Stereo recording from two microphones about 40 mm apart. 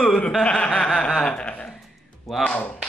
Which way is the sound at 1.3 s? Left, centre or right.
Left.